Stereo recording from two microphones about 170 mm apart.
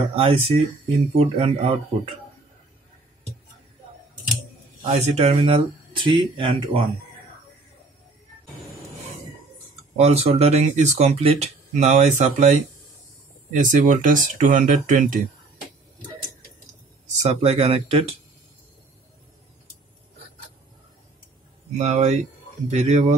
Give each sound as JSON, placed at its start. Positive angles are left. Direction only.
{"t": 0.1, "sound": "speech", "side_deg": -35}
{"t": 4.8, "sound": "speech", "side_deg": -40}
{"t": 9.9, "sound": "speech", "side_deg": -40}
{"t": 17.2, "sound": "speech", "side_deg": -40}
{"t": 21.7, "sound": "speech", "side_deg": -40}